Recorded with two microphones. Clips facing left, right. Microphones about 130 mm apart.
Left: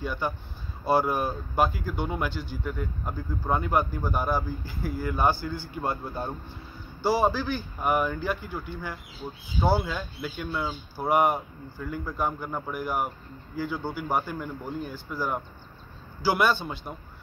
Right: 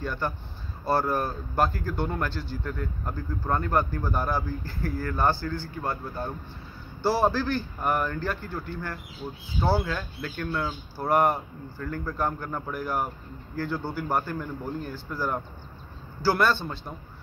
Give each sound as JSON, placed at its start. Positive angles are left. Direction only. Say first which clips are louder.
{"t": 0.0, "sound": "speech", "louder": "even", "side_deg": 5}
{"t": 5.8, "sound": "speech", "louder": "left 4 dB", "side_deg": 20}
{"t": 7.0, "sound": "a man's voice", "louder": "even", "side_deg": 0}